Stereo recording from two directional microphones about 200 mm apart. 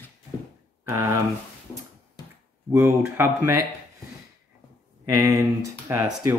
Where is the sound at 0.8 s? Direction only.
15° right (ahead or behind).